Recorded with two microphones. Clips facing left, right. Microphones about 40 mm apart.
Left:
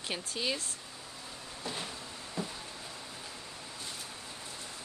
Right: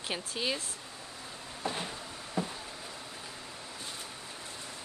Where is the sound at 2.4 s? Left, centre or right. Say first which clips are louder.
Right 4 dB; right.